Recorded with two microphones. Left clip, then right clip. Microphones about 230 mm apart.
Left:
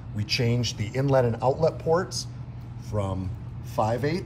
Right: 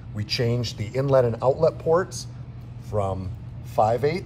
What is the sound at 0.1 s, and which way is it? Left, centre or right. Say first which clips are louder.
Speech: right 1 dB; centre.